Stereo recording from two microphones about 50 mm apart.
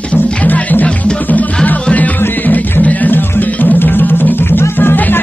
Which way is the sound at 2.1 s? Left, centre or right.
Left.